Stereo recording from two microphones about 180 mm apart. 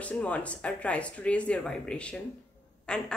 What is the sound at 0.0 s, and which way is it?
A woman's voice, 10° left (ahead or behind).